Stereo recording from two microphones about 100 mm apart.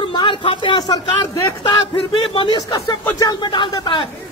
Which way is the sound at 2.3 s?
55° left (ahead or behind).